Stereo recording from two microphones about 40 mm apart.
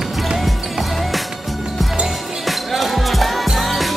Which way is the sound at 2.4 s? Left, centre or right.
Centre.